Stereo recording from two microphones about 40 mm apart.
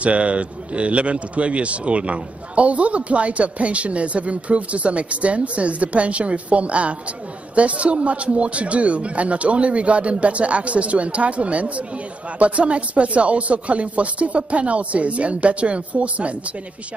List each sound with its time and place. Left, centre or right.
0.0 s speech: right